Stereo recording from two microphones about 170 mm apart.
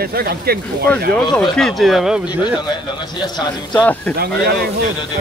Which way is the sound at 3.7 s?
10° left (ahead or behind).